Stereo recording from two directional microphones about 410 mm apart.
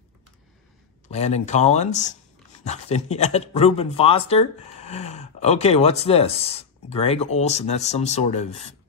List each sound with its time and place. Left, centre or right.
1.0 s speech: centre